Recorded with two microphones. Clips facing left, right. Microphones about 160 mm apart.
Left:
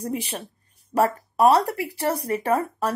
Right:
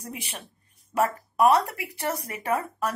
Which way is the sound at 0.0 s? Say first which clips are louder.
Left 9 dB; 35° left (ahead or behind).